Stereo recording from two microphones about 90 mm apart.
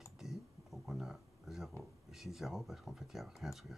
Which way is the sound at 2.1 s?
5° right (ahead or behind).